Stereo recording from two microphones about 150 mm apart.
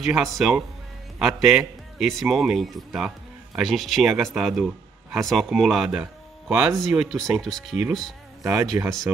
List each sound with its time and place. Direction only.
0.0 s speech: centre (ahead or behind)
8.5 s speech: 15° right (ahead or behind)